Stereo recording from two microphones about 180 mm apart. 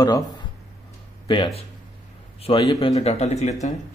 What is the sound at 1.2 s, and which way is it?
A man's voice, 25° left (ahead or behind).